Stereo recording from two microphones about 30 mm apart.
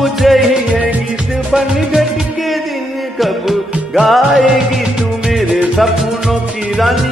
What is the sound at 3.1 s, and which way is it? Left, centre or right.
Music, centre.